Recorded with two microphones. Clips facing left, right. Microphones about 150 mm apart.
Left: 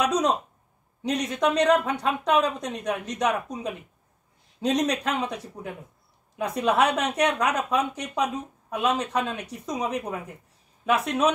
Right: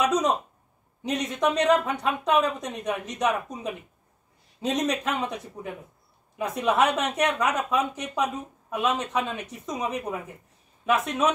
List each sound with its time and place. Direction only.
0.0 s speech: centre (ahead or behind)